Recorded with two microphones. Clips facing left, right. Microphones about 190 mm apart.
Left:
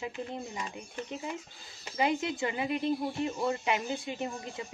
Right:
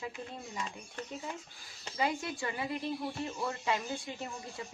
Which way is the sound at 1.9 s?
20° left (ahead or behind).